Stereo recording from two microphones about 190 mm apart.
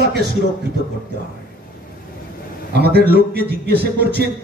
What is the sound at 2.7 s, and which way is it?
Speech, 60° right (ahead or behind).